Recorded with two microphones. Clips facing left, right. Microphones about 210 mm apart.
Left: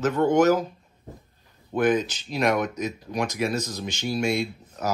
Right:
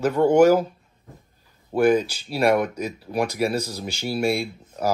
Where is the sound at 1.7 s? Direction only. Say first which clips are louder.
Right 4 dB; 10° right (ahead or behind).